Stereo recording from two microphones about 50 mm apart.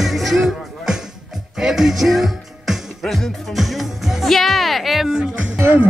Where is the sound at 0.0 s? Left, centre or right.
Centre.